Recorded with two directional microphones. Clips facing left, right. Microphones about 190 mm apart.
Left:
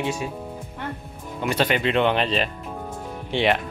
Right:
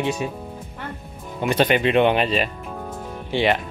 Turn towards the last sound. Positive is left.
turn(degrees=0)  # may be behind; listen again after turning